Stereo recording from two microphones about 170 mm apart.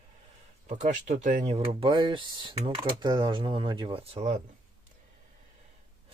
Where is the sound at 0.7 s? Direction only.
45° right (ahead or behind).